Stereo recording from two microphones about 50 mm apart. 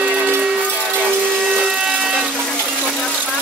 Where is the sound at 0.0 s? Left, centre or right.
Centre.